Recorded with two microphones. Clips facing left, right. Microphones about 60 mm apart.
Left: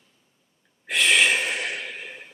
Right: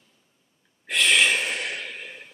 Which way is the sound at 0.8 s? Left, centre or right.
Centre.